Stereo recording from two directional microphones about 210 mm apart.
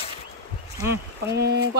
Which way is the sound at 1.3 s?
55° right (ahead or behind).